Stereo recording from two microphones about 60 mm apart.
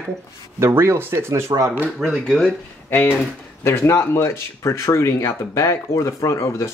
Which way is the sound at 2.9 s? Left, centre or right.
Left.